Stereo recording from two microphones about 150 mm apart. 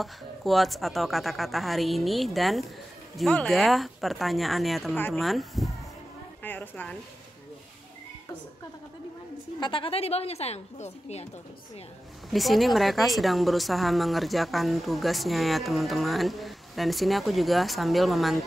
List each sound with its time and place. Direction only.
0.0 s a woman's voice: centre (ahead or behind)
4.9 s speech: 10° left (ahead or behind)
5.2 s a woman's voice: centre (ahead or behind)
6.4 s speech: 10° left (ahead or behind)
9.6 s a woman's voice: 35° left (ahead or behind)
12.3 s a woman's voice: centre (ahead or behind)